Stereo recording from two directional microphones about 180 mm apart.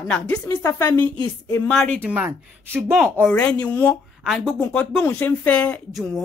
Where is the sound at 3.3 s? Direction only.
5° left (ahead or behind).